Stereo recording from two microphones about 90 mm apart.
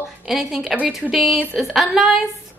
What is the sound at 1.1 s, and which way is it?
A woman's voice, 5° right (ahead or behind).